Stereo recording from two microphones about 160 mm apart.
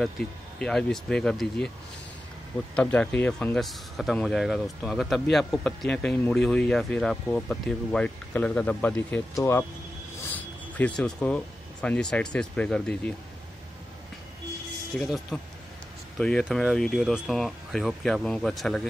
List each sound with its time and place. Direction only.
0.0 s speech: 5° left (ahead or behind)
2.7 s speech: 5° left (ahead or behind)
10.3 s a sound: 10° left (ahead or behind)
11.0 s speech: 5° left (ahead or behind)
14.9 s speech: 5° left (ahead or behind)